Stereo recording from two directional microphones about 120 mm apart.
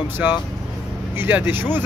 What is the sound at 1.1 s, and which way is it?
Speech, 20° right (ahead or behind).